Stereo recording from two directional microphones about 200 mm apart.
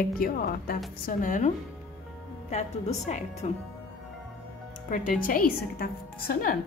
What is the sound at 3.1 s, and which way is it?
Speech, 35° left (ahead or behind).